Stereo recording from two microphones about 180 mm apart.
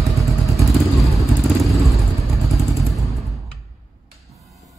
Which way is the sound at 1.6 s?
Centre (ahead or behind).